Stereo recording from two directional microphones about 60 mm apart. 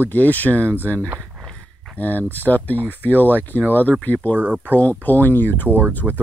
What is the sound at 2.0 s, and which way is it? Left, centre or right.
Speech, left.